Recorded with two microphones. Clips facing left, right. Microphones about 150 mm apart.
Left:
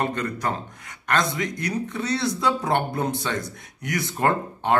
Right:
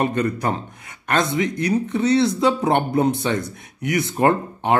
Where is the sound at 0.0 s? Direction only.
20° right (ahead or behind).